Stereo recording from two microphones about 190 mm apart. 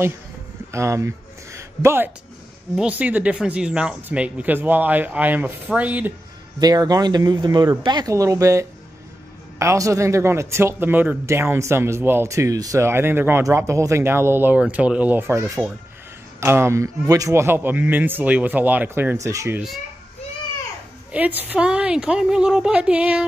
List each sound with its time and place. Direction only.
0.7 s speech: 15° right (ahead or behind)
6.6 s speech: 20° right (ahead or behind)
21.1 s a woman's voice: 10° right (ahead or behind)